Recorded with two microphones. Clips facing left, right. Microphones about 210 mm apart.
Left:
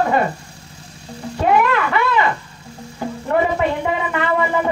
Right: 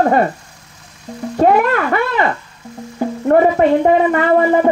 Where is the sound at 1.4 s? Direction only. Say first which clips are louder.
Right 4 dB; 45° right (ahead or behind).